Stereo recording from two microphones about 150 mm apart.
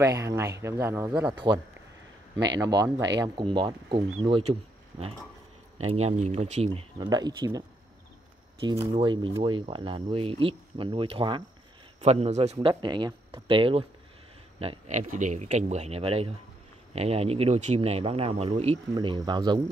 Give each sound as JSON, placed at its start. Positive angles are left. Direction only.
{"t": 0.0, "sound": "speech", "side_deg": -20}
{"t": 1.5, "sound": "speech", "side_deg": -30}
{"t": 7.0, "sound": "speech", "side_deg": -25}
{"t": 9.0, "sound": "speech", "side_deg": -30}
{"t": 12.0, "sound": "speech", "side_deg": -45}
{"t": 12.6, "sound": "speech", "side_deg": -30}
{"t": 14.9, "sound": "speech", "side_deg": -55}